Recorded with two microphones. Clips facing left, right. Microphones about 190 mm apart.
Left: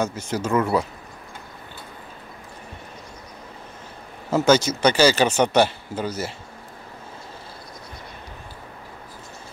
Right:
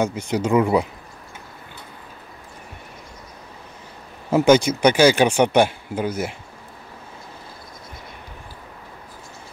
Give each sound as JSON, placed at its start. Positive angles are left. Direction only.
{"t": 0.0, "sound": "speech", "side_deg": -15}
{"t": 4.3, "sound": "speech", "side_deg": -15}